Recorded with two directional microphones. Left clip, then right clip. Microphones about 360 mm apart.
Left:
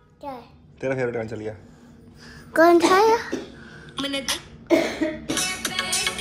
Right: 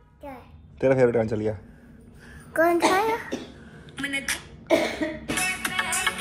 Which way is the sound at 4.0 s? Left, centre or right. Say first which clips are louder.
Left 2 dB; centre.